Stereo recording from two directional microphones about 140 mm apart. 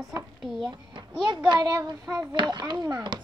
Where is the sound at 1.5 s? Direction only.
30° right (ahead or behind).